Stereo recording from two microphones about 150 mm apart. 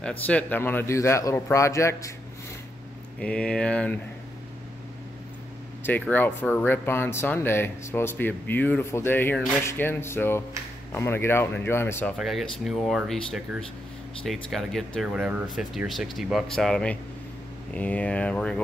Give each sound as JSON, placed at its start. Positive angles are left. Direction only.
{"t": 0.0, "sound": "speech", "side_deg": 10}
{"t": 3.2, "sound": "speech", "side_deg": 5}
{"t": 5.9, "sound": "speech", "side_deg": 10}
{"t": 12.2, "sound": "speech", "side_deg": 0}